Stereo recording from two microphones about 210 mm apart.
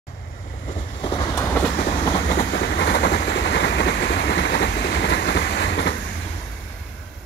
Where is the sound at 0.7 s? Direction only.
35° left (ahead or behind).